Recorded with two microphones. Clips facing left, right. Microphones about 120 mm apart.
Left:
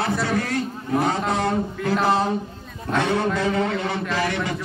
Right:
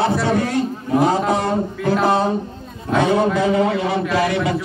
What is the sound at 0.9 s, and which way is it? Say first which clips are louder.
A man's voice: right 5 dB; 5° right (ahead or behind).